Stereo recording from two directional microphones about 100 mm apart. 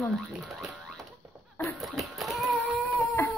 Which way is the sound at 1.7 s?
Centre (ahead or behind).